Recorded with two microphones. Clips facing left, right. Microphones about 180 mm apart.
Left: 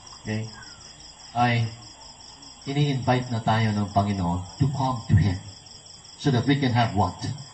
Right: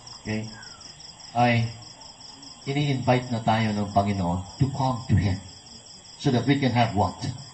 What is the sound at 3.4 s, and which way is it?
Speech, 15° right (ahead or behind).